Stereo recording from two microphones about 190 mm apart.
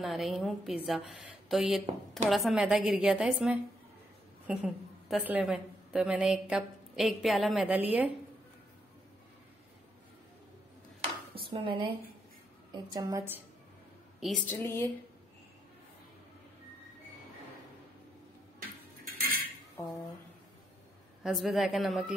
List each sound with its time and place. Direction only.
0.0 s a woman's voice: centre (ahead or behind)
11.3 s a woman's voice: 25° right (ahead or behind)
14.2 s a woman's voice: 10° left (ahead or behind)
19.8 s a woman's voice: centre (ahead or behind)
21.2 s a woman's voice: centre (ahead or behind)